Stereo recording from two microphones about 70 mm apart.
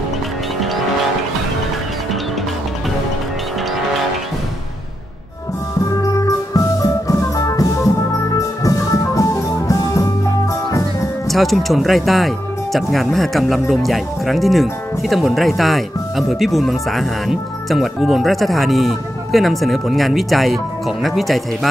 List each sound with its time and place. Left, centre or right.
6.0 s music: left
11.2 s speech: centre